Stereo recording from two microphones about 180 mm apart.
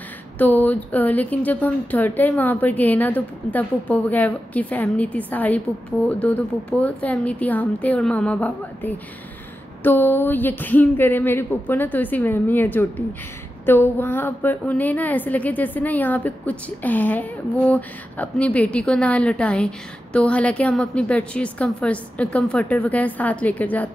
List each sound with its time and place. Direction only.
0.4 s a woman's voice: 10° left (ahead or behind)